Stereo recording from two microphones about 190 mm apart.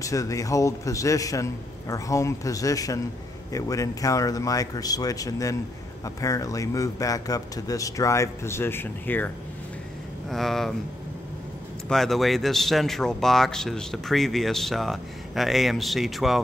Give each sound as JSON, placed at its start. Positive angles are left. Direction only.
{"t": 0.0, "sound": "a man's voice", "side_deg": 15}
{"t": 10.3, "sound": "speech", "side_deg": 0}
{"t": 11.9, "sound": "speech", "side_deg": 0}